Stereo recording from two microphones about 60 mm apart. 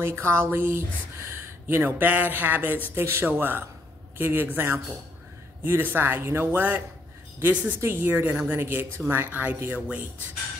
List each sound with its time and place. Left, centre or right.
0.0 s speech: right
2.9 s a man's voice: right
6.5 s a man's voice: right